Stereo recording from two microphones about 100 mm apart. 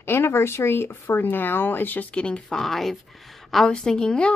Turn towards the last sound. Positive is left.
turn(degrees=10)  # may be behind; listen again after turning